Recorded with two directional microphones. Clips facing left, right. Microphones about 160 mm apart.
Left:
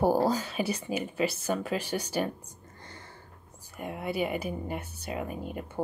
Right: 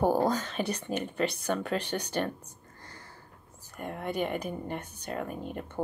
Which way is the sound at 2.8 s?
25° left (ahead or behind).